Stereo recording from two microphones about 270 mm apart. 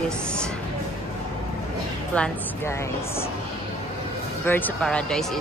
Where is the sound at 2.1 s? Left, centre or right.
Centre.